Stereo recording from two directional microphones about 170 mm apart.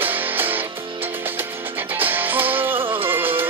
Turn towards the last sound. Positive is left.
turn(degrees=-10)  # may be behind; listen again after turning